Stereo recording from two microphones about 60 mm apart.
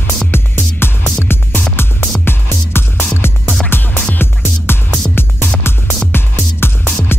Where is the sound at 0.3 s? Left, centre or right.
Left.